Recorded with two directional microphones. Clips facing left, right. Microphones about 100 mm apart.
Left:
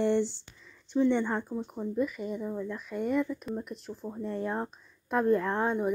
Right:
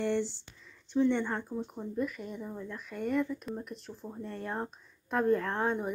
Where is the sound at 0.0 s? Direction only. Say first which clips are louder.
Left 4 dB; 20° left (ahead or behind).